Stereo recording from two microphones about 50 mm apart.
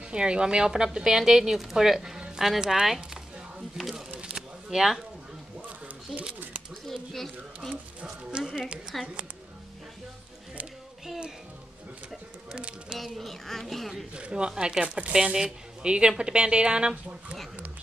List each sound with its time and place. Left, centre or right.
0.1 s a woman's voice: centre
3.9 s a sound: centre
6.1 s speech: centre
6.9 s a sound: centre
7.7 s speech: right
8.9 s speech: centre
12.5 s speech: centre
13.0 s speech: centre
14.1 s a woman's voice: right